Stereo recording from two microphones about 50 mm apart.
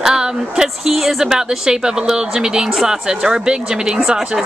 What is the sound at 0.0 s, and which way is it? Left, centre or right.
A woman's voice, centre.